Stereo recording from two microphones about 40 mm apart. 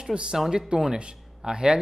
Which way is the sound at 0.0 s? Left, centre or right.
Right.